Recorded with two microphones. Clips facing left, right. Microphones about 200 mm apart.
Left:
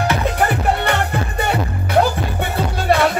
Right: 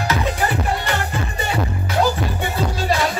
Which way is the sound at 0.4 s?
60° left (ahead or behind).